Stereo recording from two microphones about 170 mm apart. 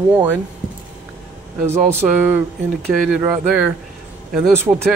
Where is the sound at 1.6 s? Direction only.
15° right (ahead or behind).